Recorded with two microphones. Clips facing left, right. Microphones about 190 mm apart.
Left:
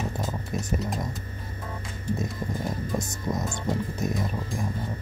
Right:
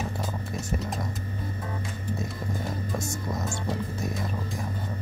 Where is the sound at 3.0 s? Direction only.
20° left (ahead or behind).